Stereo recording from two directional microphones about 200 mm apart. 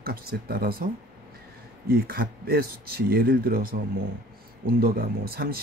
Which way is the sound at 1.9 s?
50° right (ahead or behind).